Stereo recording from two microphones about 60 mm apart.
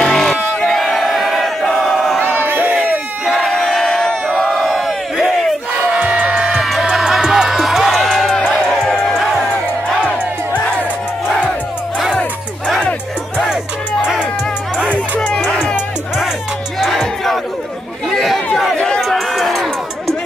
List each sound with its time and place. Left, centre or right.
0.0 s battle cry: centre
2.2 s crowd: right
3.3 s crowd: centre
4.5 s battle cry: centre
5.9 s music: centre
6.6 s music: centre
12.1 s music: centre
16.8 s crowd: centre
18.1 s chatter: centre
18.9 s run: centre